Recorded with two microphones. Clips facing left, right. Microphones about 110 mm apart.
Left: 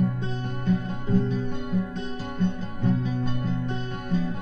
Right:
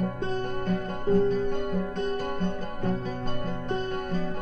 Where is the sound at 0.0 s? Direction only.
50° right (ahead or behind).